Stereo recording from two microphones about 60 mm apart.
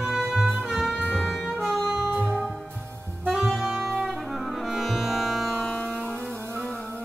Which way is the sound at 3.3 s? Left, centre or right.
Centre.